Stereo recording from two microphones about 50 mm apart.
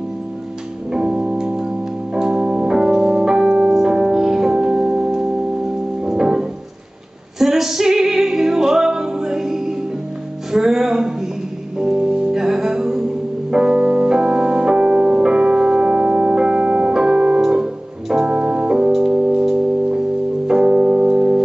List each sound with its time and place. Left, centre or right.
0.9 s music: centre
13.5 s keyboard: centre
17.4 s piano: centre
18.1 s keyboard: centre
19.4 s music: centre
20.4 s keyboard: centre